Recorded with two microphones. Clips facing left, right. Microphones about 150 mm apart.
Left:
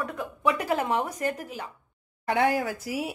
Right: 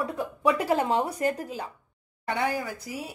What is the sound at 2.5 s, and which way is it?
Speech, 90° left.